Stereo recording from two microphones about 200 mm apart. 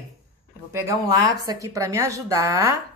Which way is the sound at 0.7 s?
15° right (ahead or behind).